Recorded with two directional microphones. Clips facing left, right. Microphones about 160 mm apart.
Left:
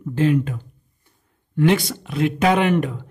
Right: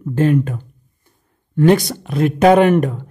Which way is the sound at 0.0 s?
50° right (ahead or behind).